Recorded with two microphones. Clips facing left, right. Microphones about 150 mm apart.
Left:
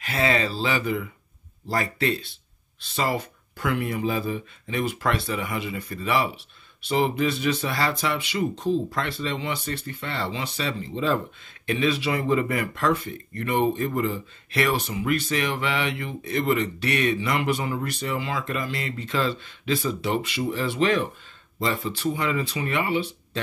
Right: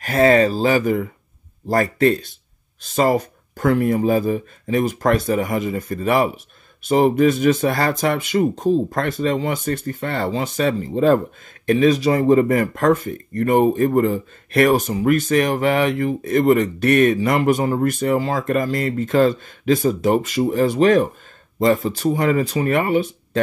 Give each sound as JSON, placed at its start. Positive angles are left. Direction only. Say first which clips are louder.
{"t": 0.0, "sound": "speech", "louder": "right 10 dB", "side_deg": -45}